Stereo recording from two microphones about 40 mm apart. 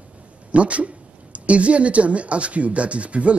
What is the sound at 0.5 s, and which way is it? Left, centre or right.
Speech, right.